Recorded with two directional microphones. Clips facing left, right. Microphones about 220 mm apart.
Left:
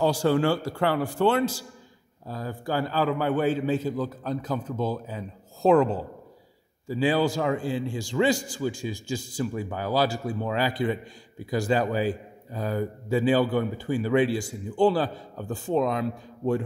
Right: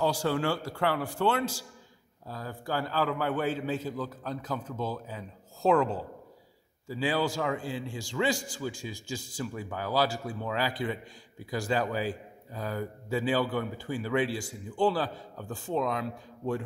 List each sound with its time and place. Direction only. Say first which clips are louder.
0.0 s a man's voice: left 6 dB; 25° left (ahead or behind)
6.9 s a man's voice: left 6 dB; 20° left (ahead or behind)